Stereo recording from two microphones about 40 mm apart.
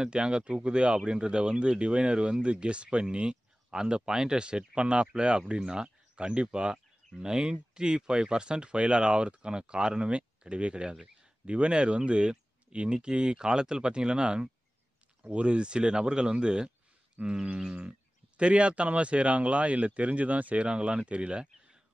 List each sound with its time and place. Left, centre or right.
0.0 s speech: right